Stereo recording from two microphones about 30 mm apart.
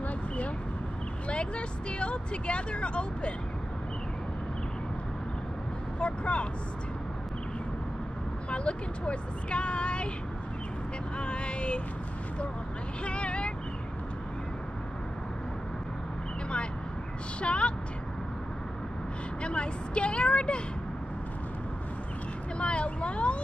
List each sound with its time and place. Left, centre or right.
1.3 s speech: left
5.9 s speech: left
8.5 s speech: left
11.1 s vehicle: left
13.0 s vehicle: left
17.4 s speech: left
19.4 s vehicle: left
22.6 s vehicle: left